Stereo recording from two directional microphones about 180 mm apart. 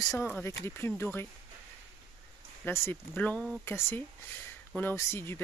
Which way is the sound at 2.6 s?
15° left (ahead or behind).